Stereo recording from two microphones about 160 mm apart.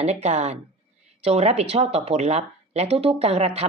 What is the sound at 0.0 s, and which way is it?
Speech, 40° right (ahead or behind).